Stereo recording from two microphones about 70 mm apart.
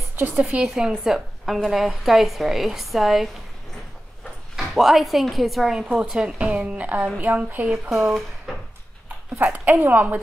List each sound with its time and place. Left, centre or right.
0.7 s a woman's voice: centre
4.6 s a woman's voice: centre
9.4 s speech: right